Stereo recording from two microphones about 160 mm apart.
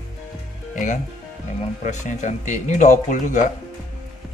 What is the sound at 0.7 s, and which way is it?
Speech, 50° left (ahead or behind).